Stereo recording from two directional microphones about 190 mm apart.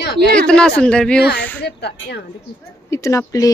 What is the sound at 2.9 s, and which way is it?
Speech, 15° left (ahead or behind).